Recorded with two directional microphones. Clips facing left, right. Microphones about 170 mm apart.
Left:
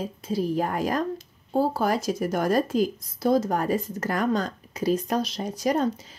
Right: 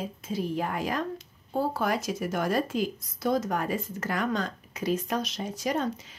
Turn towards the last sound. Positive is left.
turn(degrees=35)  # may be behind; listen again after turning